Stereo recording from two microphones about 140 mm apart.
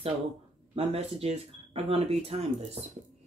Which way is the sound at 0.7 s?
45° right (ahead or behind).